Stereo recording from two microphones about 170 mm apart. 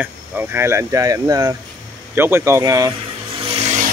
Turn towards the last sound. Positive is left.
turn(degrees=-40)  # may be behind; listen again after turning